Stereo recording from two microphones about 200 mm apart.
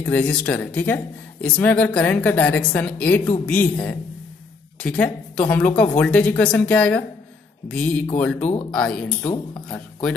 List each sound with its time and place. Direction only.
0.0 s speech: 5° left (ahead or behind)
8.4 s speech: 35° left (ahead or behind)
8.7 s speech: 5° left (ahead or behind)
9.2 s speech: 20° left (ahead or behind)